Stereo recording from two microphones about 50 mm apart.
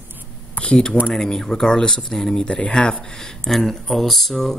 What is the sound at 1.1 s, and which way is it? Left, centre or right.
Speech, centre.